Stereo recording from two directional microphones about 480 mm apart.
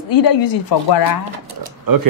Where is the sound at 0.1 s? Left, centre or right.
Left.